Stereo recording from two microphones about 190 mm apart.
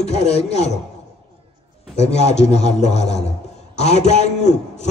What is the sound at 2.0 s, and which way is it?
A man's voice, 35° left (ahead or behind).